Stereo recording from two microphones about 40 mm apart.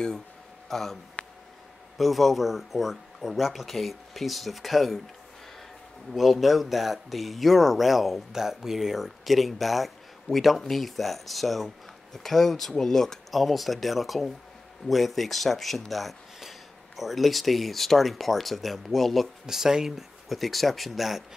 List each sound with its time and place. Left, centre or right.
0.7 s speech: centre
1.2 s a sound: left
2.0 s speech: centre
6.1 s speech: centre
13.3 s speech: centre
19.4 s speech: centre
20.2 s speech: centre